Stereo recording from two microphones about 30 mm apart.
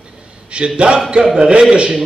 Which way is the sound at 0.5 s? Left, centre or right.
Right.